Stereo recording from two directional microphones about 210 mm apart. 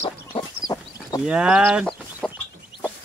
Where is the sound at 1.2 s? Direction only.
5° right (ahead or behind).